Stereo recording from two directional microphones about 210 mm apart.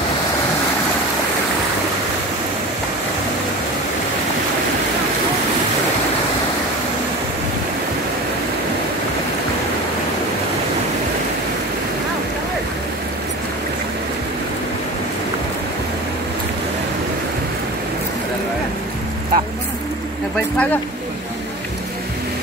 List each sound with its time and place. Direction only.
19.3 s vehicle: 45° right (ahead or behind)